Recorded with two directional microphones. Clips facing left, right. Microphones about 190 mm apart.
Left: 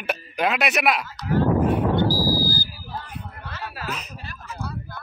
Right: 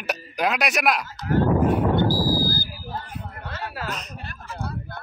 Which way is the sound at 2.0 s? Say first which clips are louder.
Even; 50° right (ahead or behind).